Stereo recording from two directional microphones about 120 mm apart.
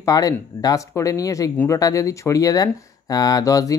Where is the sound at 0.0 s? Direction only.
30° left (ahead or behind).